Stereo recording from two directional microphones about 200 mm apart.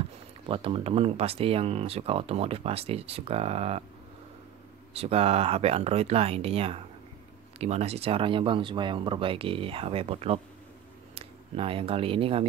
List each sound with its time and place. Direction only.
0.5 s speech: 25° right (ahead or behind)
4.9 s speech: 30° right (ahead or behind)